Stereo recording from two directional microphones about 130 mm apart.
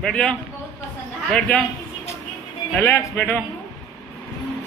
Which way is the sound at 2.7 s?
15° left (ahead or behind).